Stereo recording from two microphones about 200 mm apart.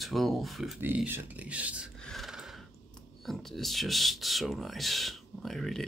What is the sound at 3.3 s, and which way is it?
Speech, centre (ahead or behind).